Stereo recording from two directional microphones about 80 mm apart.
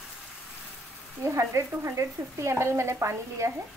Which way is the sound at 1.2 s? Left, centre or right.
Right.